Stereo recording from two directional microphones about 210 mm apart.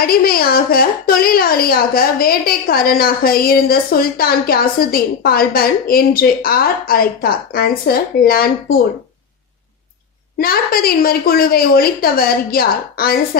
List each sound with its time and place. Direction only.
0.0 s a woman's voice: 45° left (ahead or behind)
10.3 s a woman's voice: 45° left (ahead or behind)